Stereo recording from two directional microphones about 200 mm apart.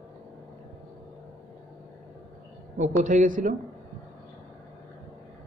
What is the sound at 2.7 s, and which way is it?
Speech, 40° right (ahead or behind).